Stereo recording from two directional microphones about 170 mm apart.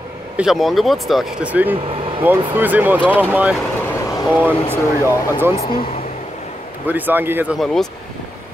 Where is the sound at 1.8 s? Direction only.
30° right (ahead or behind).